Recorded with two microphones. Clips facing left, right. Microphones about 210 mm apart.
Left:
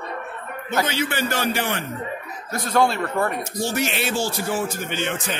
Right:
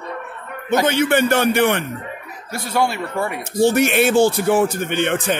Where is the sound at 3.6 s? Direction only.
55° right (ahead or behind).